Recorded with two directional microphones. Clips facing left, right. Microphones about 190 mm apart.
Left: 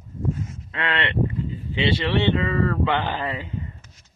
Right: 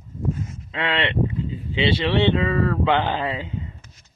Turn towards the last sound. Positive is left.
turn(degrees=-15)  # may be behind; listen again after turning